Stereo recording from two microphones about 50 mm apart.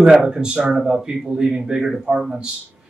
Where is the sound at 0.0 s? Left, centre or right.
Centre.